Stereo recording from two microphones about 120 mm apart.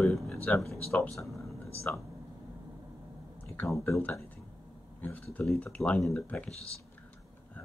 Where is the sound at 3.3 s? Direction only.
20° left (ahead or behind).